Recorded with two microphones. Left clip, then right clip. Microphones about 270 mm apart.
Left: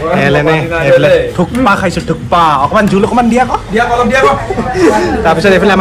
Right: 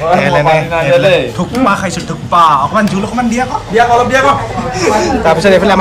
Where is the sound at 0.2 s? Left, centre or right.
Centre.